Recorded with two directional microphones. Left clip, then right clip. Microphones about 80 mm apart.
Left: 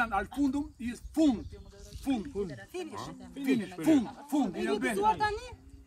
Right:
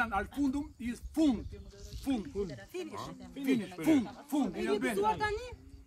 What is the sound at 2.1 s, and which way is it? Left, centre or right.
Speech, right.